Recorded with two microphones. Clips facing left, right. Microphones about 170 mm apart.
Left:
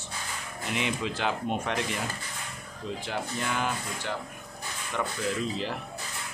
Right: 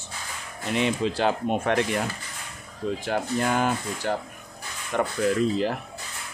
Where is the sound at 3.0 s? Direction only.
45° right (ahead or behind).